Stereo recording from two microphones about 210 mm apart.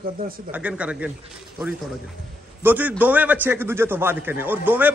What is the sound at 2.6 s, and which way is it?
A man's voice, 10° right (ahead or behind).